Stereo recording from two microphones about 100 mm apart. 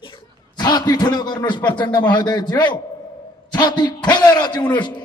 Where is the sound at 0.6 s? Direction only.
45° left (ahead or behind).